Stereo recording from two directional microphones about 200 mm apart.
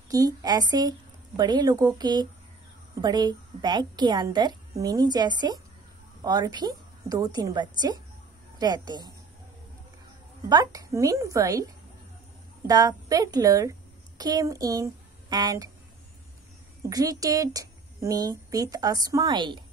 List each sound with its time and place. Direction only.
0.1 s a woman's voice: 20° right (ahead or behind)
10.5 s a woman's voice: 20° right (ahead or behind)
16.9 s a woman's voice: 20° right (ahead or behind)